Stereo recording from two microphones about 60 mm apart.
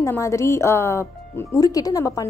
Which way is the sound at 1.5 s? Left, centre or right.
Left.